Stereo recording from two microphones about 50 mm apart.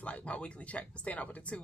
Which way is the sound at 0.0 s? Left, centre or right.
Left.